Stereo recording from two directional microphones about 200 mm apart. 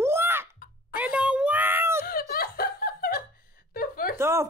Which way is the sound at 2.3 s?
50° left (ahead or behind).